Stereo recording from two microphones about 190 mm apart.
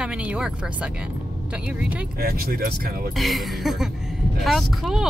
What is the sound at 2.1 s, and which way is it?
Speech, 50° right (ahead or behind).